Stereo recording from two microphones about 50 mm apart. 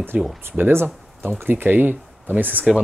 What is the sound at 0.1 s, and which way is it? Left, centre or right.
Speech, right.